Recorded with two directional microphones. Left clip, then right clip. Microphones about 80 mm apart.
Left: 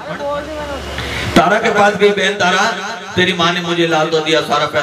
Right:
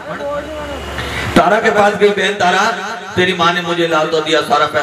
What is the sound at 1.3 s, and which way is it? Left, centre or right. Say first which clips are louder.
A man's voice: right 1 dB; left.